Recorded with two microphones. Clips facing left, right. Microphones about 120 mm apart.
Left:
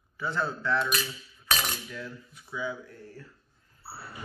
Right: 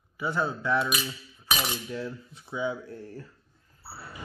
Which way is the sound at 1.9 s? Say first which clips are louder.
Right 6 dB; 25° right (ahead or behind).